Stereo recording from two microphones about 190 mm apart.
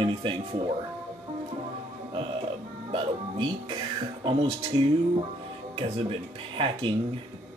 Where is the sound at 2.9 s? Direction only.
25° right (ahead or behind).